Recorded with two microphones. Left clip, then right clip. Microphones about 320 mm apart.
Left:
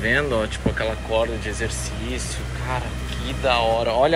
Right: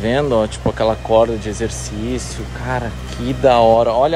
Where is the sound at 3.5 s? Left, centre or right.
Right.